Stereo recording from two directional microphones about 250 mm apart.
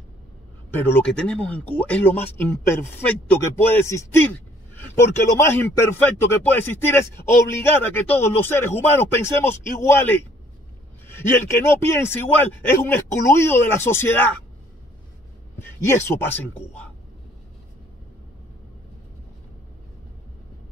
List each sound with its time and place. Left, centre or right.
0.7 s speech: centre
11.1 s a sound: centre
12.0 s speech: centre
15.6 s speech: centre